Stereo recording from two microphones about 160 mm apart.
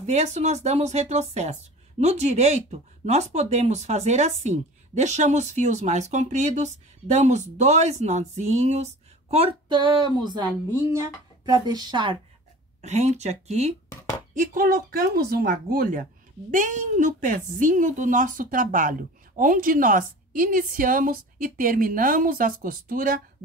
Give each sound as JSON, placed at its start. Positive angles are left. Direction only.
{"t": 0.0, "sound": "a woman's voice", "side_deg": -45}
{"t": 12.8, "sound": "speech", "side_deg": -45}
{"t": 14.3, "sound": "speech", "side_deg": -65}